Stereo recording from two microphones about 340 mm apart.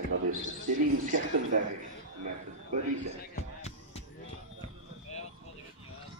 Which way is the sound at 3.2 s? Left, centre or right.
Centre.